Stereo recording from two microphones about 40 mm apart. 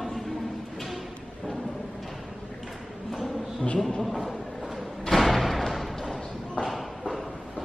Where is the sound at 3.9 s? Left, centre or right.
Centre.